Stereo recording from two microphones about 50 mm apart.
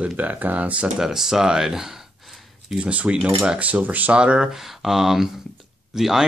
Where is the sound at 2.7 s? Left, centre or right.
Right.